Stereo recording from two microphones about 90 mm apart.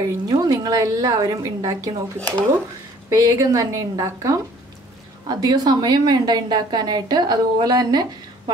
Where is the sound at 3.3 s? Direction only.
35° right (ahead or behind).